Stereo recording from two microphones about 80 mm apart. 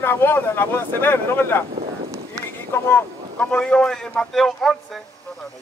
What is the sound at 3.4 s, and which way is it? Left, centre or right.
Speech, centre.